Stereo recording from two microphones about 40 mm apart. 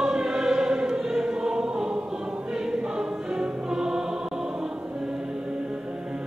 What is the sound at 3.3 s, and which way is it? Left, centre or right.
Music, centre.